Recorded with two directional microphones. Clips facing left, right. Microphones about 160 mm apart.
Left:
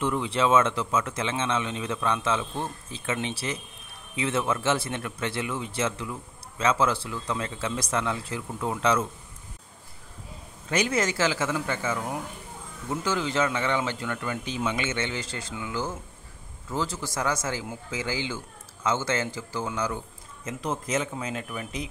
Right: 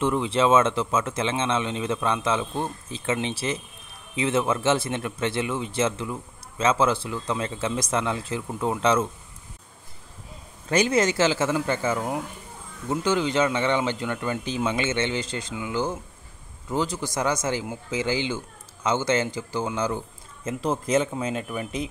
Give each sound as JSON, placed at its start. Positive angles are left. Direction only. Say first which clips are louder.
{"t": 0.0, "sound": "a man's voice", "louder": "right 3 dB", "side_deg": -25}
{"t": 10.9, "sound": "a man's voice", "louder": "right 5 dB", "side_deg": -20}
{"t": 13.0, "sound": "a man's voice", "louder": "right 4 dB", "side_deg": -20}